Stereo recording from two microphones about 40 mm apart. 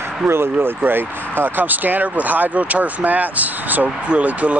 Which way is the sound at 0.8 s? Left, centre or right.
Right.